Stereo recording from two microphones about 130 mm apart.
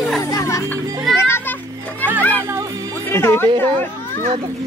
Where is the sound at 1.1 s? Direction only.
20° left (ahead or behind).